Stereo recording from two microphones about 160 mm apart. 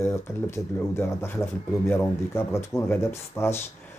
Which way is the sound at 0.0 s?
15° left (ahead or behind).